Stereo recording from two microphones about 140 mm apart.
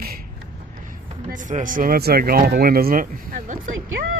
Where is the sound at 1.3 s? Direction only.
65° right (ahead or behind).